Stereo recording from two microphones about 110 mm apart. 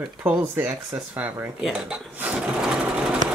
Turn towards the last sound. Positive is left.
turn(degrees=-10)  # may be behind; listen again after turning